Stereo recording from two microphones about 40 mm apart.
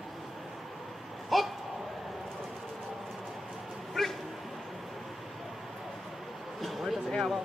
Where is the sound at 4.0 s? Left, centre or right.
Centre.